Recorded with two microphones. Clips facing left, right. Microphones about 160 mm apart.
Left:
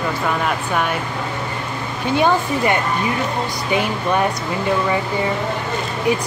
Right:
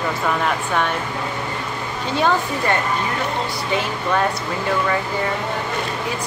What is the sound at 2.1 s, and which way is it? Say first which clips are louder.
Speech: left 3 dB; 15° left (ahead or behind).